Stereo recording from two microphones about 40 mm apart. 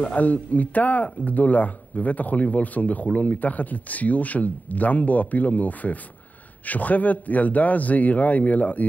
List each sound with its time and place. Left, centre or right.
0.0 s speech: left